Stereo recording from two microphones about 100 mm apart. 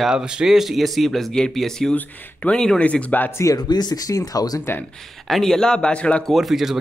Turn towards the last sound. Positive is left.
turn(degrees=0)  # may be behind; listen again after turning